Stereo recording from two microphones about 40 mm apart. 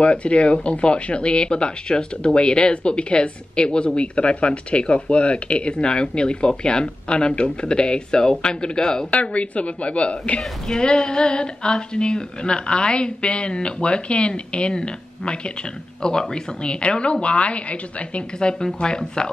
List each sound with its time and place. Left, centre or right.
0.0 s speech: left
9.1 s a woman's voice: left
10.7 s speech: centre